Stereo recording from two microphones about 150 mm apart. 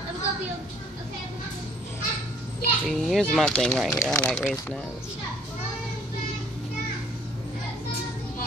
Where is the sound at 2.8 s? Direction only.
Centre (ahead or behind).